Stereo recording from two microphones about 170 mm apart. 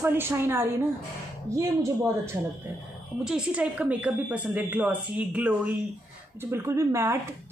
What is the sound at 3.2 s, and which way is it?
A woman's voice, 5° right (ahead or behind).